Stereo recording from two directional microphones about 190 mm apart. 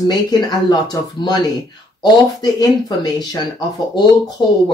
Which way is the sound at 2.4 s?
20° left (ahead or behind).